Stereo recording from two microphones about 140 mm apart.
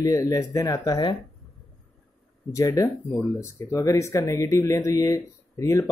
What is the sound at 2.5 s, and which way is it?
Speech, 25° left (ahead or behind).